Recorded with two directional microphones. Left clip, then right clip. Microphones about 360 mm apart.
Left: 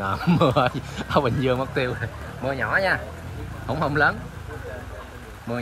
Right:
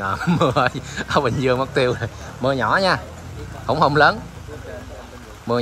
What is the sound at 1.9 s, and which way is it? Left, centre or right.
Speech, left.